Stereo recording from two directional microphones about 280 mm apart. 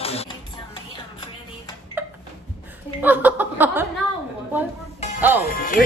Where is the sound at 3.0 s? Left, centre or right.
Centre.